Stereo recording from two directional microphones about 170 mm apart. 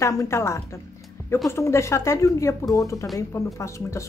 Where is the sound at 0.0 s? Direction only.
20° left (ahead or behind).